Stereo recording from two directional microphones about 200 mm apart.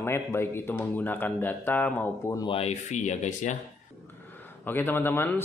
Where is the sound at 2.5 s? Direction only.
30° left (ahead or behind).